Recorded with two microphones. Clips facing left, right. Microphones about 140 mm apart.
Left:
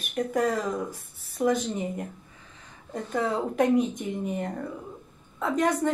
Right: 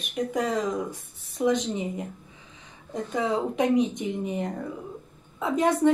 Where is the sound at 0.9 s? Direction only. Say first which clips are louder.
Right 2 dB; 5° left (ahead or behind).